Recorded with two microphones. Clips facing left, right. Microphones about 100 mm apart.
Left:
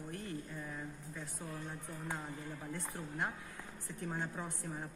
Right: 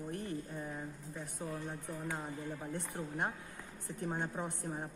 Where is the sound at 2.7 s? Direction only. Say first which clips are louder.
Right 3 dB; 20° right (ahead or behind).